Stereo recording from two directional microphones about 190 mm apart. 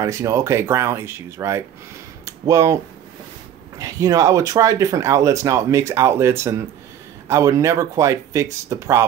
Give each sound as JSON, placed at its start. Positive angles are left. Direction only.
{"t": 0.0, "sound": "speech", "side_deg": -15}